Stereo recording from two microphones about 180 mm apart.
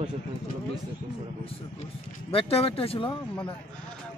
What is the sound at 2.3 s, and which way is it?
Speech, 30° left (ahead or behind).